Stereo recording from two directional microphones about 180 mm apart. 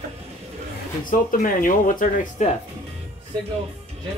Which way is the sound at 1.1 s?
50° left (ahead or behind).